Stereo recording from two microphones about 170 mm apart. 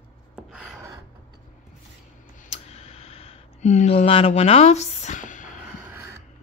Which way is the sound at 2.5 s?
40° left (ahead or behind).